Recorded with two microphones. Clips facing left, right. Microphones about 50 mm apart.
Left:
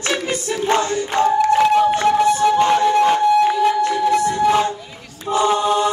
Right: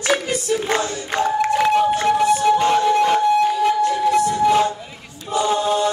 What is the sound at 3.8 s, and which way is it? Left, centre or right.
Music, left.